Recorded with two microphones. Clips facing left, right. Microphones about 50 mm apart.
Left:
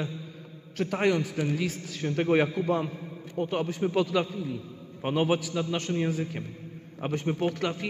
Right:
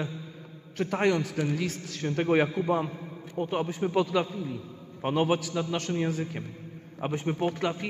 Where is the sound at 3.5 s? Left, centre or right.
Centre.